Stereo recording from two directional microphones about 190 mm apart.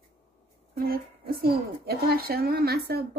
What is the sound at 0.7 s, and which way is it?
Speech, 50° right (ahead or behind).